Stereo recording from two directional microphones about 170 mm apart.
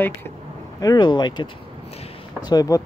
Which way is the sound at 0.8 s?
25° left (ahead or behind).